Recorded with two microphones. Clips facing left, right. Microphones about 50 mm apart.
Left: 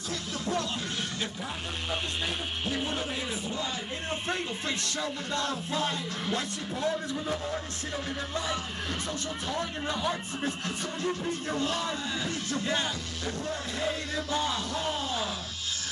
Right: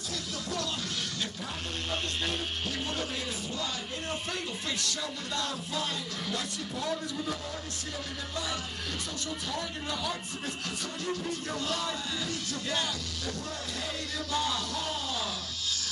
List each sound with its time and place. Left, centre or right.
1.9 s speech: centre
4.3 s speech: left
9.5 s speech: left